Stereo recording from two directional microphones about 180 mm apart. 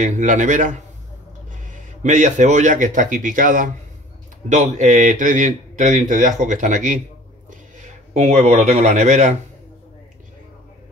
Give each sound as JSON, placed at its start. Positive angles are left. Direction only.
{"t": 0.0, "sound": "a man's voice", "side_deg": -45}